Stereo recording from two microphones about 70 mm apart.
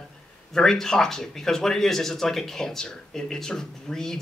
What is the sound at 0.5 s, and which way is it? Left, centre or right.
Speech, centre.